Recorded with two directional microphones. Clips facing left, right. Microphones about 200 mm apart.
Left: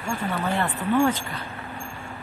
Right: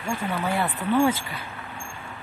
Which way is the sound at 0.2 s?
10° right (ahead or behind).